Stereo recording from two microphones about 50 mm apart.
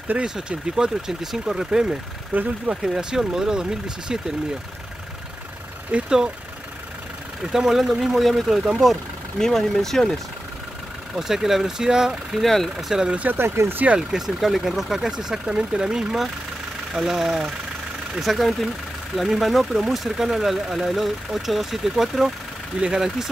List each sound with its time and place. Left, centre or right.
0.2 s speech: centre
2.3 s speech: right
2.7 s speech: centre
5.9 s speech: right
7.5 s speech: centre
9.4 s speech: centre
11.1 s speech: centre
12.4 s speech: centre
12.7 s speech: centre
13.3 s speech: right
13.9 s speech: centre